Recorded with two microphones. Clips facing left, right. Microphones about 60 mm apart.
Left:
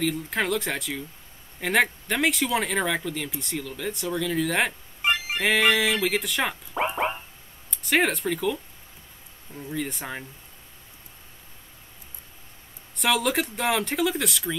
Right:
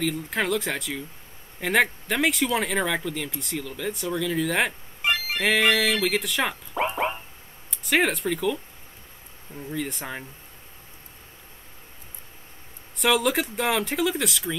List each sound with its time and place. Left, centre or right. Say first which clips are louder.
0.0 s speech: even; centre
5.0 s music: even; centre
5.4 s speech: even; centre
12.9 s speech: right 2 dB; centre